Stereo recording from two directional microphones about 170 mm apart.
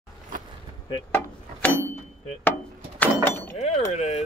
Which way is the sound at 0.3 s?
50° right (ahead or behind).